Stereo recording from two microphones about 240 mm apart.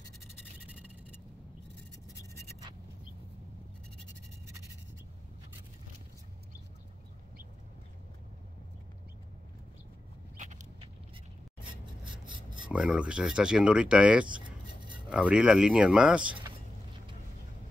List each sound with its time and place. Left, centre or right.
10.3 s a sound: right
12.3 s filing: centre
12.6 s speech: centre